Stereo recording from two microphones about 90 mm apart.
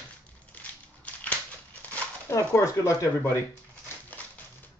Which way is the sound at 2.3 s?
35° left (ahead or behind).